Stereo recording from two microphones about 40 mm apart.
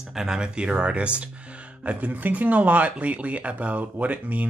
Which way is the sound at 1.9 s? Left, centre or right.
Right.